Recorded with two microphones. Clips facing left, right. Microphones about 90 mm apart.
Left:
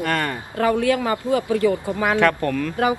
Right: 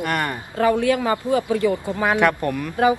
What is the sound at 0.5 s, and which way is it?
Speech, 35° right (ahead or behind).